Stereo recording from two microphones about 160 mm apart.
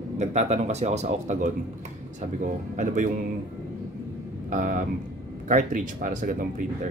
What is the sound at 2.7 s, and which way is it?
Speech, 50° right (ahead or behind).